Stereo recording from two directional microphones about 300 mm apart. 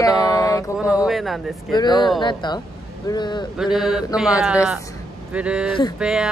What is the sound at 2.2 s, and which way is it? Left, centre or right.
Speech, centre.